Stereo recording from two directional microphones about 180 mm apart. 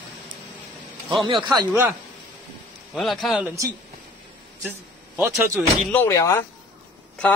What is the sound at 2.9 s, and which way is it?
Speech, centre (ahead or behind).